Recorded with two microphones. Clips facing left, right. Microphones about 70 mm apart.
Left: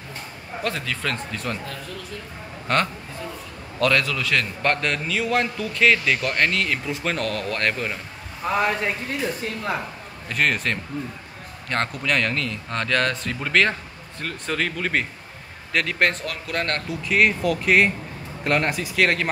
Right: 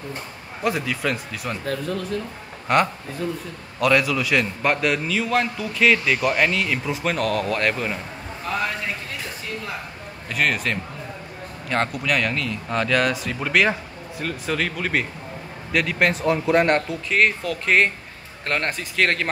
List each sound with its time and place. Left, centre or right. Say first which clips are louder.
0.7 s speech: right 4 dB; centre
2.7 s a man's voice: right 3 dB; centre
10.3 s a man's voice: even; centre
16.3 s speech: right 9 dB; right
16.9 s a man's voice: even; centre